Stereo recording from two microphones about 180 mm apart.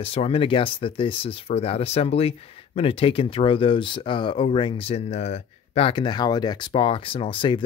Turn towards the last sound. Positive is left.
turn(degrees=30)  # may be behind; listen again after turning